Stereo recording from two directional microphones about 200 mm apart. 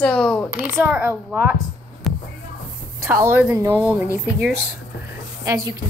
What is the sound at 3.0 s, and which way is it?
Speech, 10° right (ahead or behind).